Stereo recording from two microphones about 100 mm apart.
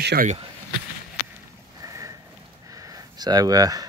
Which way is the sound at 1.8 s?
35° right (ahead or behind).